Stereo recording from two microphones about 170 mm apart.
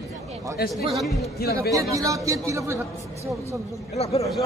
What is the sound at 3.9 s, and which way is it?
Speech, 35° left (ahead or behind).